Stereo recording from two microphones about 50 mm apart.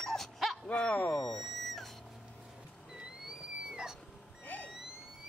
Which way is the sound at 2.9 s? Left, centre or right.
Centre.